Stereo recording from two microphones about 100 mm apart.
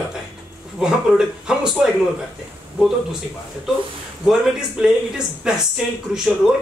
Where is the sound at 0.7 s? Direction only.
5° right (ahead or behind).